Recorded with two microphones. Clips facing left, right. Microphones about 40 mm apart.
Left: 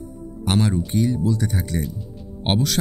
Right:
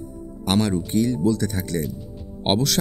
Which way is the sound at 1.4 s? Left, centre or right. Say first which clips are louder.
Even; centre.